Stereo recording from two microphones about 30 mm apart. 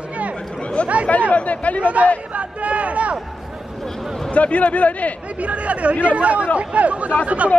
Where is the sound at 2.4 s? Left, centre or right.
Right.